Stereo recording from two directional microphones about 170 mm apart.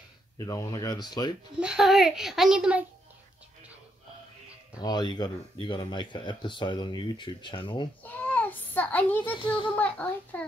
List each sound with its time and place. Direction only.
0.4 s speech: 20° left (ahead or behind)
1.6 s a child's voice: 5° right (ahead or behind)
4.7 s speech: 25° left (ahead or behind)
8.0 s child singing: 10° left (ahead or behind)
9.5 s speech: 30° left (ahead or behind)
9.8 s a child's voice: 10° left (ahead or behind)